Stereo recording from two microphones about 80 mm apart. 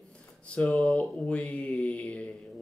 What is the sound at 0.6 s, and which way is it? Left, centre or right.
Speech, centre.